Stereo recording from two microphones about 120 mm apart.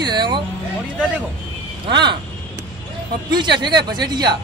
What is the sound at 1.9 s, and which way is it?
Speech, 40° right (ahead or behind).